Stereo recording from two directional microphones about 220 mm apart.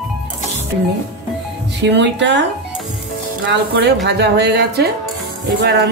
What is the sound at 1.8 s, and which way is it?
Speech, 55° right (ahead or behind).